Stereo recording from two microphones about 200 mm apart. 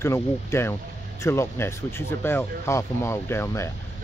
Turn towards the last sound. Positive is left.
turn(degrees=15)  # may be behind; listen again after turning